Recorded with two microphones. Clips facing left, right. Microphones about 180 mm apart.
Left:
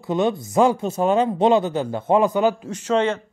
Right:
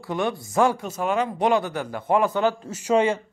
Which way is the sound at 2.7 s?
10° right (ahead or behind).